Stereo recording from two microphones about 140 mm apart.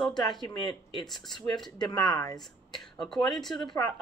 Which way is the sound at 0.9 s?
Centre (ahead or behind).